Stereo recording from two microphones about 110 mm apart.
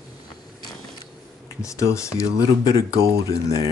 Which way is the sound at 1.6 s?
30° left (ahead or behind).